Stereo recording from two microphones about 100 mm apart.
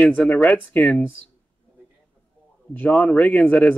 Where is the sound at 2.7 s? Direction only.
15° left (ahead or behind).